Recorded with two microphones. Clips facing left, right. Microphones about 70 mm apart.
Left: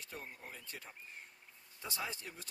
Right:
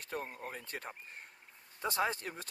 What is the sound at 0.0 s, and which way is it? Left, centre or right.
Speech, right.